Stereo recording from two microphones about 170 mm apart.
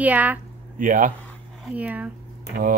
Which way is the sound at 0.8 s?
50° right (ahead or behind).